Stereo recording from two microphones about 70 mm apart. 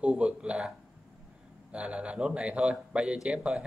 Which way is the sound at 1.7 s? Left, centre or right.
Centre.